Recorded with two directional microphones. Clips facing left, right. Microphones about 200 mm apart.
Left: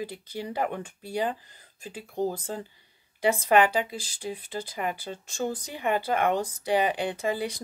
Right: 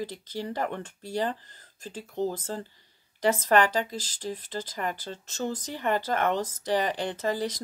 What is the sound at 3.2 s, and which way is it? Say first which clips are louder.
Speech: left 1 dB; 10° left (ahead or behind).